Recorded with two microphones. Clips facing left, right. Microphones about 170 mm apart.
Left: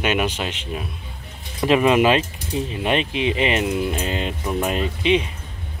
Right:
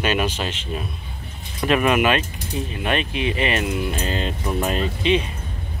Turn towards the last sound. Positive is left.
turn(degrees=15)  # may be behind; listen again after turning